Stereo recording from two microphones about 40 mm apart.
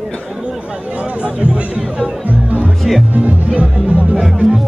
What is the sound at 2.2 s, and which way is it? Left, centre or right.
Music, right.